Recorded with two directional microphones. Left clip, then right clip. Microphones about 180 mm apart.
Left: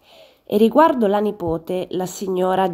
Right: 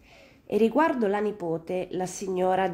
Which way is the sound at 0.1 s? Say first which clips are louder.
Left 7 dB; 40° left (ahead or behind).